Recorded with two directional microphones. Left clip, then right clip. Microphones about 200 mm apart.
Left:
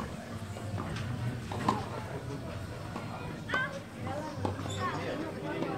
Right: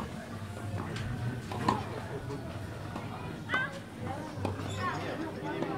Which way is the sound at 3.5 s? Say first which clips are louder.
Even; 25° left (ahead or behind).